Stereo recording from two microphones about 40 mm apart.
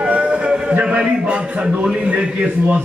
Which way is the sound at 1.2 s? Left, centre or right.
Right.